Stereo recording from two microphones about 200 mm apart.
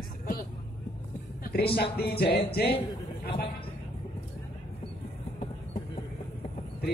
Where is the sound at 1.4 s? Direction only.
50° left (ahead or behind).